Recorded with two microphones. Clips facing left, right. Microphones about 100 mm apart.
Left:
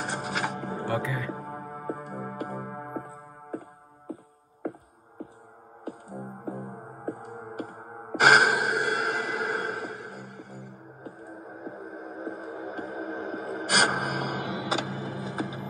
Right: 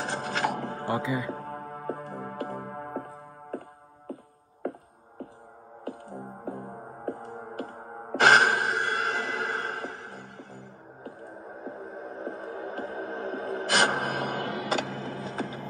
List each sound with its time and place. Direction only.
0.0 s music: 15° left (ahead or behind)
0.8 s music: 15° right (ahead or behind)
1.3 s music: 10° left (ahead or behind)
5.9 s music: 10° left (ahead or behind)